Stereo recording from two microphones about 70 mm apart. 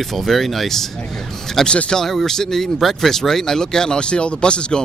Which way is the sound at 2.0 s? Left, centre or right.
Centre.